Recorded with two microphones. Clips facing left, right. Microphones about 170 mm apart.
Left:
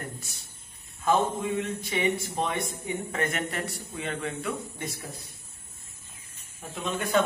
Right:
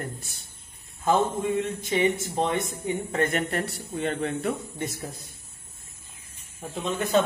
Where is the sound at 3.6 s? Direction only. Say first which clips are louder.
Right 6 dB; 50° right (ahead or behind).